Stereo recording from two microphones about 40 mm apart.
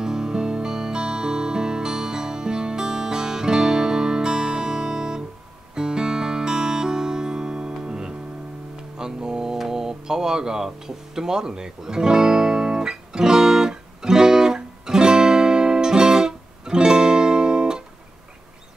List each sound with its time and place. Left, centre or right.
0.0 s music: centre
11.1 s guitar: centre